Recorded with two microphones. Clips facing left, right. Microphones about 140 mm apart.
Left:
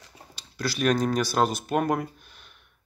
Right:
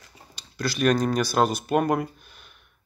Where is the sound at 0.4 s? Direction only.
5° left (ahead or behind).